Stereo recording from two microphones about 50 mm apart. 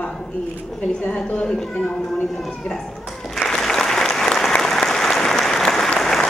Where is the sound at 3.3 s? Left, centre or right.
Centre.